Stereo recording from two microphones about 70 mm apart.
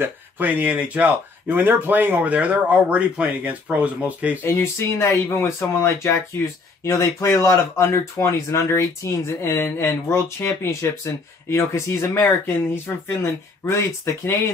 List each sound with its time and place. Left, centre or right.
0.0 s speech: right
4.5 s speech: left